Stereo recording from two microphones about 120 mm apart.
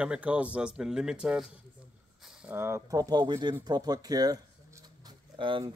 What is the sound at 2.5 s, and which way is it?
Speech, 20° right (ahead or behind).